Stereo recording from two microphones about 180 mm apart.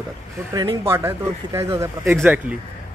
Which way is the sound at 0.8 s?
15° right (ahead or behind).